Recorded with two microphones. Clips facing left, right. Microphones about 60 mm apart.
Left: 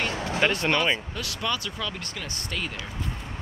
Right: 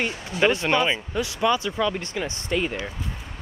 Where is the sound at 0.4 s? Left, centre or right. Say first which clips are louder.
Right 4 dB; centre.